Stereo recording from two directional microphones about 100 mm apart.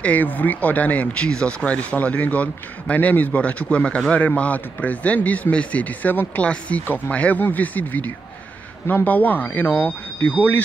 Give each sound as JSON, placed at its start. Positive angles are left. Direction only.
{"t": 0.0, "sound": "speech", "side_deg": 15}